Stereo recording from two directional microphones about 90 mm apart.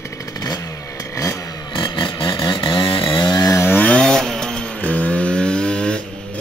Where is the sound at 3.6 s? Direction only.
20° left (ahead or behind).